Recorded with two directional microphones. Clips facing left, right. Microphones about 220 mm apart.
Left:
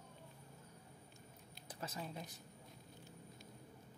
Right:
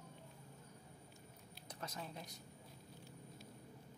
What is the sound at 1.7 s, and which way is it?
Speech, 5° left (ahead or behind).